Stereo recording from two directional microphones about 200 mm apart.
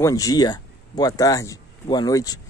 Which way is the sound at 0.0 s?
15° left (ahead or behind).